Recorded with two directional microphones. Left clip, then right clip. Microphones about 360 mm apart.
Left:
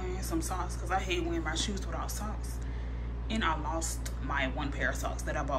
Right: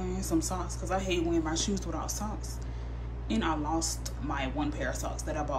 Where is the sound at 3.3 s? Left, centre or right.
Centre.